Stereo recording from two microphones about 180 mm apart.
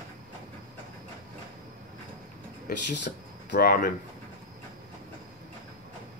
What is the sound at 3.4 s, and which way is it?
Speech, 55° left (ahead or behind).